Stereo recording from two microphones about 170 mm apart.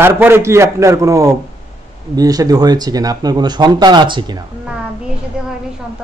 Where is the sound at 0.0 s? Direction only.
15° right (ahead or behind).